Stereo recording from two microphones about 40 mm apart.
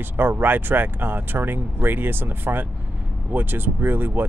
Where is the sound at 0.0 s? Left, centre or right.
Right.